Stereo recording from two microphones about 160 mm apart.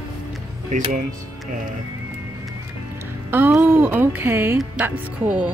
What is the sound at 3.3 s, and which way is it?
Speech, 10° right (ahead or behind).